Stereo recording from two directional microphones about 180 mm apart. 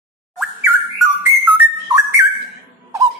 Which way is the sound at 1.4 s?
10° right (ahead or behind).